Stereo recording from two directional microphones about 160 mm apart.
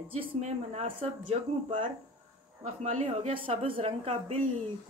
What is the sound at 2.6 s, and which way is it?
A woman's voice, 45° right (ahead or behind).